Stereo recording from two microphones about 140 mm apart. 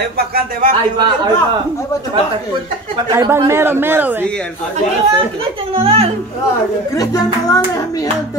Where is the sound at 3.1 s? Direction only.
20° right (ahead or behind).